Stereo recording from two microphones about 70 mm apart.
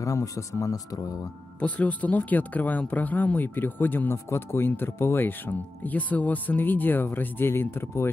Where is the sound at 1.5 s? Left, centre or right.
Centre.